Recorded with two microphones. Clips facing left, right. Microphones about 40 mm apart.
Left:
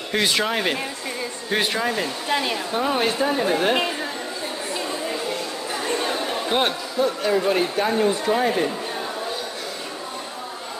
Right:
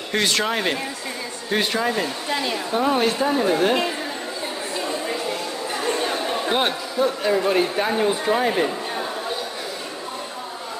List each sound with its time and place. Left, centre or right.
0.1 s speech: centre
2.2 s speech: left
2.5 s speech: centre
4.7 s chatter: centre